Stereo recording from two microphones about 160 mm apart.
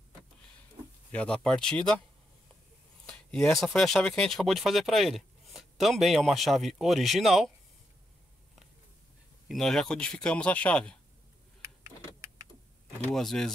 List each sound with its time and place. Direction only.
1.1 s speech: 5° left (ahead or behind)
3.1 s speech: 5° left (ahead or behind)
9.5 s speech: 5° left (ahead or behind)
11.6 s vehicle: 20° right (ahead or behind)
13.1 s speech: centre (ahead or behind)